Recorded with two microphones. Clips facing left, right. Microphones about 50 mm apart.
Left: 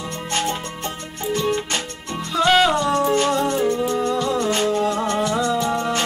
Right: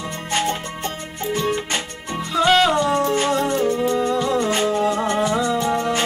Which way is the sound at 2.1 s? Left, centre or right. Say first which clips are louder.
Even; centre.